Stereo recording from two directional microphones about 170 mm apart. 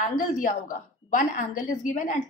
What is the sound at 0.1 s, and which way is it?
A woman's voice, 50° left (ahead or behind).